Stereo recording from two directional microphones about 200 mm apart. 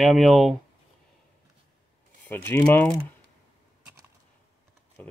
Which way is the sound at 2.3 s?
10° left (ahead or behind).